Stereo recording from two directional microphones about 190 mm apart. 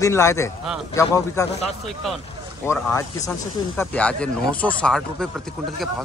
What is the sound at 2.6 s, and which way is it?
Speech, 10° left (ahead or behind).